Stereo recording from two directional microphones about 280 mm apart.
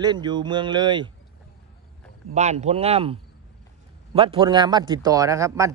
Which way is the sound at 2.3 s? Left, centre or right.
Right.